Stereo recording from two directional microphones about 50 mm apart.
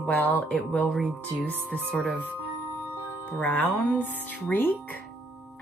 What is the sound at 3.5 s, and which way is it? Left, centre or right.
Speech, left.